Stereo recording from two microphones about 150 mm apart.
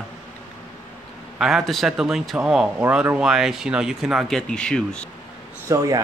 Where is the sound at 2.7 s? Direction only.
15° right (ahead or behind); by 5.1 s 5° left (ahead or behind).